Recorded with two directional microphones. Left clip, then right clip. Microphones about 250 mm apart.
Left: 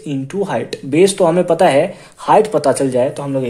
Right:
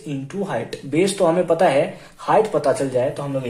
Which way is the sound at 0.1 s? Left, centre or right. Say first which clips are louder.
Left 6 dB; left.